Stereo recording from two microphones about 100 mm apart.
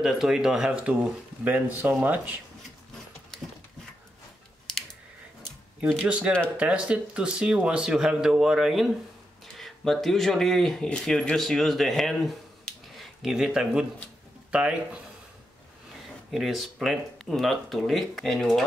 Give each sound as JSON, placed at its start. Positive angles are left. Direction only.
{"t": 0.0, "sound": "speech", "side_deg": -5}
{"t": 4.7, "sound": "typing", "side_deg": 5}
{"t": 6.0, "sound": "speech", "side_deg": -10}
{"t": 16.3, "sound": "speech", "side_deg": 0}